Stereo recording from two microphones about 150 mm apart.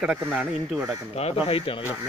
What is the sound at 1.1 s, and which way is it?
Speech, 40° left (ahead or behind).